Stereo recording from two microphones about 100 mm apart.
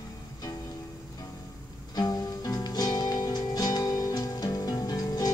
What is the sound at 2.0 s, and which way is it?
Music, 40° left (ahead or behind).